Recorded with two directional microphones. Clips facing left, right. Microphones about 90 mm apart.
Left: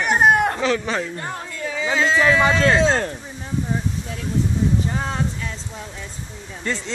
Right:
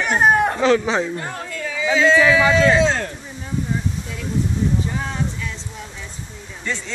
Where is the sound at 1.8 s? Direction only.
35° left (ahead or behind).